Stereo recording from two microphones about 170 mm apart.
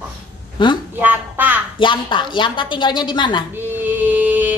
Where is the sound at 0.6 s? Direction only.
30° left (ahead or behind).